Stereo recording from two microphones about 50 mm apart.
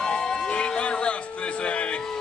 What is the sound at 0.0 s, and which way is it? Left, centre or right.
Music, centre.